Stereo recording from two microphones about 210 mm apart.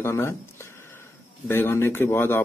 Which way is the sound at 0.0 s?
10° left (ahead or behind).